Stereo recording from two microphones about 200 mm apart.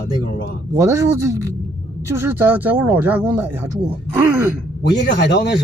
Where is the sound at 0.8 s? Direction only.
15° right (ahead or behind).